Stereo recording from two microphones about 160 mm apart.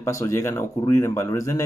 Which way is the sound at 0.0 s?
20° left (ahead or behind).